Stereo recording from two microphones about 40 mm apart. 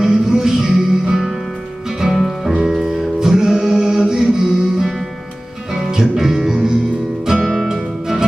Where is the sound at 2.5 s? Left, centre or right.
Centre.